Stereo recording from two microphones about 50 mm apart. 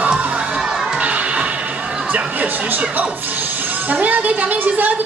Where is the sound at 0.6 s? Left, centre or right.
Centre.